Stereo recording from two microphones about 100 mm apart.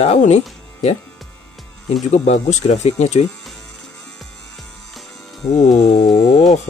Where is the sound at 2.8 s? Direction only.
90° left.